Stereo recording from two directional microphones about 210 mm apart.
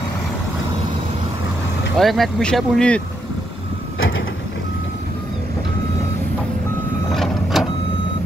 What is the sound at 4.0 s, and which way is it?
Vehicle, 65° left (ahead or behind).